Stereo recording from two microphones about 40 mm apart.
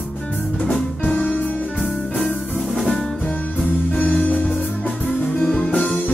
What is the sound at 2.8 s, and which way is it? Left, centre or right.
Music, centre.